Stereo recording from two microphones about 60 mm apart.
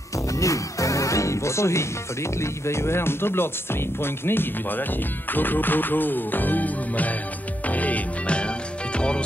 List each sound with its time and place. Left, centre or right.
0.4 s music: left
2.4 s speech: left
7.6 s music: left